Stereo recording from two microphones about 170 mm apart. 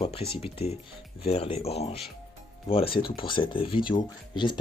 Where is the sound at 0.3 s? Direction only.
35° left (ahead or behind).